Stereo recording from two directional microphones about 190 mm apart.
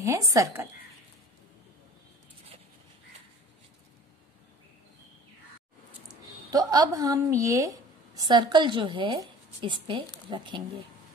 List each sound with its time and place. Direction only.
0.0 s speech: 15° right (ahead or behind)
6.5 s a woman's voice: 20° right (ahead or behind)